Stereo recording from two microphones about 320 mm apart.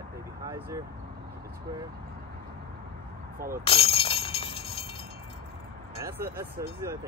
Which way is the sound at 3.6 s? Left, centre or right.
Centre.